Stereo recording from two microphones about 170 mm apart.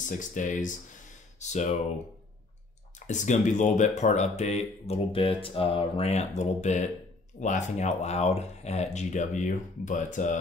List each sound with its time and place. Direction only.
0.2 s speech: 45° left (ahead or behind)
3.1 s speech: 45° left (ahead or behind)